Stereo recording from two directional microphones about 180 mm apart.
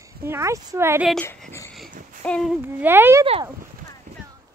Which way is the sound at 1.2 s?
15° left (ahead or behind).